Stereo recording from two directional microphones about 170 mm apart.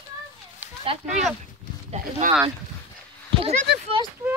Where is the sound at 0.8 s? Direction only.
40° right (ahead or behind).